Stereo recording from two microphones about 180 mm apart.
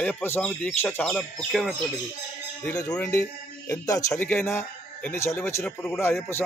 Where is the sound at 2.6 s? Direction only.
20° left (ahead or behind).